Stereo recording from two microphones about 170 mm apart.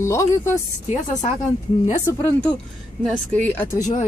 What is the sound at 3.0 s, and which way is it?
Speech, 10° left (ahead or behind).